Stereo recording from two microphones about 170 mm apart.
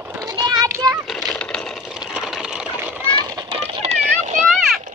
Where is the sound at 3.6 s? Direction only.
35° right (ahead or behind).